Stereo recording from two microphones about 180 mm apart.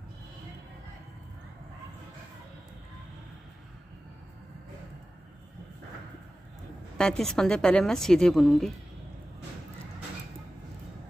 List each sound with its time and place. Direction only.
7.0 s a woman's voice: 5° left (ahead or behind)